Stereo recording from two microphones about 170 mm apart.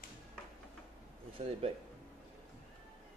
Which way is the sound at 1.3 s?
35° right (ahead or behind).